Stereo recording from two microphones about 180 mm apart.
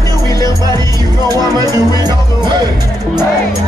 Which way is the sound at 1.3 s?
20° right (ahead or behind).